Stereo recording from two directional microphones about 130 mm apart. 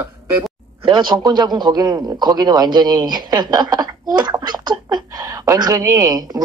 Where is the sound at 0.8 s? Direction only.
35° right (ahead or behind).